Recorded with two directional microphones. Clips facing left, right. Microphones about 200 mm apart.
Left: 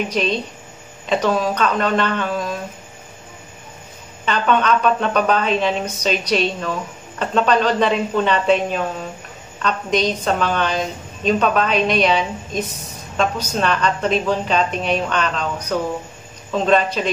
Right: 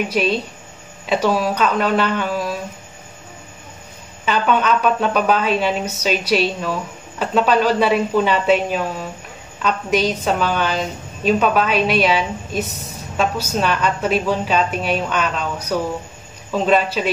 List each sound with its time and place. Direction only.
0.1 s a woman's voice: 10° right (ahead or behind)
4.3 s a woman's voice: 5° right (ahead or behind)